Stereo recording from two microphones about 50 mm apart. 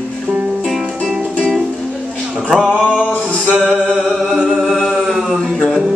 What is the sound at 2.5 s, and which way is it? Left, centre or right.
Music, centre.